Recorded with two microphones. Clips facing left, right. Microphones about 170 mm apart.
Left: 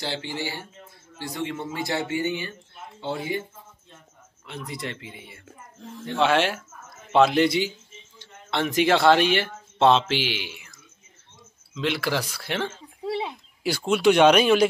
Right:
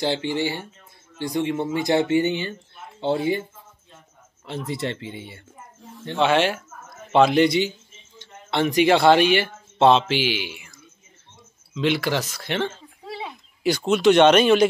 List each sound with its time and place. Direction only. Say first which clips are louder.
0.0 s speech: right 7 dB; 20° right (ahead or behind)
4.5 s speech: right 6 dB; 30° right (ahead or behind)
6.1 s a man's voice: right 2 dB; centre (ahead or behind)
11.7 s a man's voice: right 4 dB; centre (ahead or behind)
13.0 s a sound: left 6 dB; 25° left (ahead or behind)
13.6 s speech: right 3 dB; 5° left (ahead or behind)